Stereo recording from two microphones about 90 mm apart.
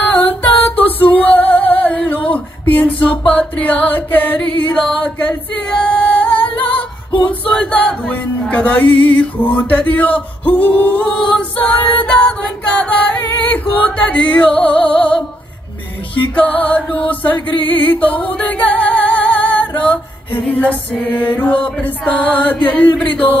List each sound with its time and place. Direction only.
0.3 s music: 20° left (ahead or behind)
7.2 s choir: 15° left (ahead or behind)
8.2 s music: 15° left (ahead or behind)
11.1 s a capella: 10° left (ahead or behind)
16.3 s music: 15° left (ahead or behind)